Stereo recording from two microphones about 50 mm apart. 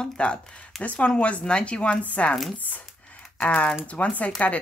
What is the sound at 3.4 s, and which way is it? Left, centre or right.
Speech, centre.